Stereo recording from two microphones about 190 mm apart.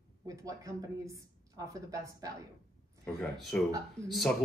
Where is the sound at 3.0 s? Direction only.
5° left (ahead or behind).